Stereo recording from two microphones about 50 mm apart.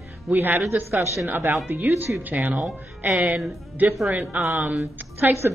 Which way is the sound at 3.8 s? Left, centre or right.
Right.